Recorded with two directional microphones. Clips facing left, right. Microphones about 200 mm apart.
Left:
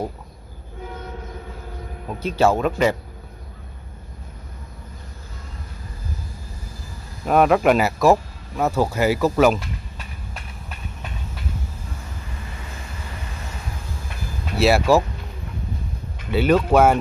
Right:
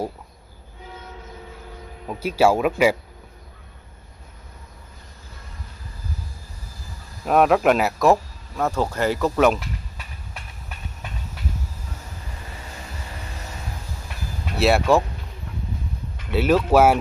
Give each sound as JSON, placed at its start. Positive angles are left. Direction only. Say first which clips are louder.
{"t": 2.0, "sound": "speech", "louder": "even", "side_deg": -10}
{"t": 7.2, "sound": "speech", "louder": "left 1 dB", "side_deg": 0}
{"t": 14.6, "sound": "speech", "louder": "left 1 dB", "side_deg": 0}
{"t": 16.3, "sound": "speech", "louder": "left 1 dB", "side_deg": 0}